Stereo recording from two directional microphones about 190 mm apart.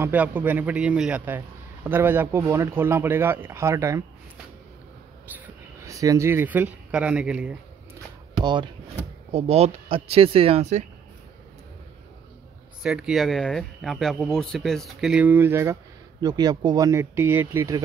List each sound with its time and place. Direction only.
0.0 s speech: 10° right (ahead or behind)
5.8 s speech: 15° right (ahead or behind)
8.4 s speech: 25° right (ahead or behind)
12.8 s speech: 5° right (ahead or behind)